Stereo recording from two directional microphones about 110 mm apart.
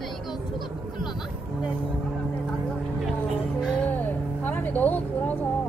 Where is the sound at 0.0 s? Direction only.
Centre (ahead or behind).